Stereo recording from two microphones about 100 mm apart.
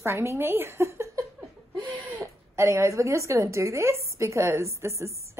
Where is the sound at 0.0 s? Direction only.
25° right (ahead or behind).